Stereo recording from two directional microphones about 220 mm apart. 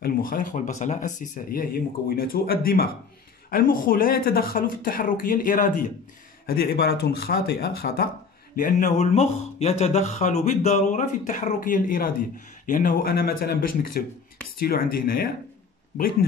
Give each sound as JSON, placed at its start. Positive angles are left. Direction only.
{"t": 0.0, "sound": "speech", "side_deg": 40}